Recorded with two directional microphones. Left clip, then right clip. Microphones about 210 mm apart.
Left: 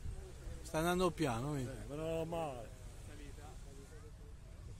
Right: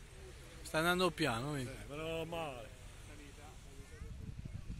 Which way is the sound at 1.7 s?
35° left (ahead or behind).